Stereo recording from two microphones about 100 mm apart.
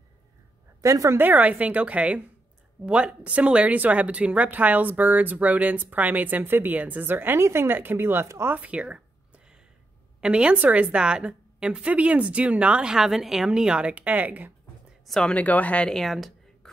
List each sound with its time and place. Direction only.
0.7 s speech: 35° right (ahead or behind)
1.2 s speech: 15° right (ahead or behind)
8.5 s a sound: 10° right (ahead or behind)
10.2 s speech: 10° right (ahead or behind)
15.0 s speech: 5° left (ahead or behind)
15.3 s speech: 15° left (ahead or behind); by 16.3 s centre (ahead or behind)